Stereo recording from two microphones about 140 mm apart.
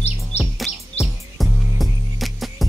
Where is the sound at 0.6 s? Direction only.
Centre (ahead or behind).